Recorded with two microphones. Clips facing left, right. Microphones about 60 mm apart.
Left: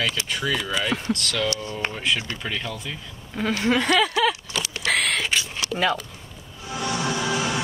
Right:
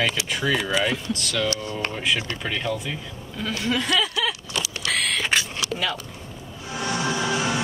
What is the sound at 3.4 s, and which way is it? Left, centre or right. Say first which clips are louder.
Speech: left 4 dB; left.